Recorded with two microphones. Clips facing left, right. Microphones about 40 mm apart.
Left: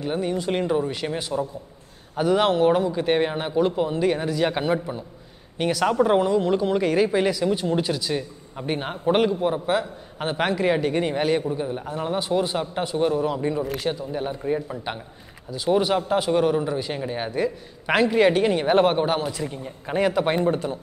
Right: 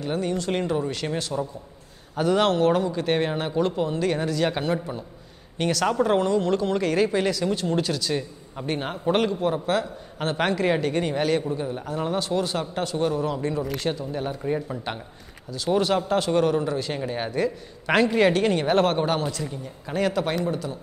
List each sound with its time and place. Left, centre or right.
0.0 s speech: centre
15.5 s speech: centre
19.4 s speech: left
20.3 s speech: left